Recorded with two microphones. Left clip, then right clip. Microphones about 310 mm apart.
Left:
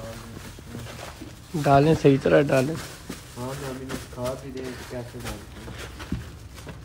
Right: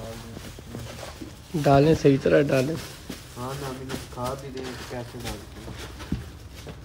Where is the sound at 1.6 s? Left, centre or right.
Centre.